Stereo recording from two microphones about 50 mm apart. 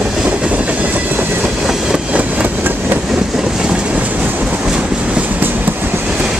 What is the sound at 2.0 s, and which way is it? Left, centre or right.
Vehicle, right.